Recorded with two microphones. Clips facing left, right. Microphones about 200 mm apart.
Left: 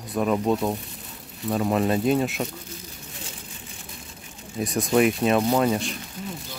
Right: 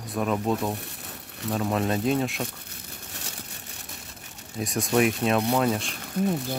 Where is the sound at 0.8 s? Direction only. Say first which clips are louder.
Even; 70° right (ahead or behind).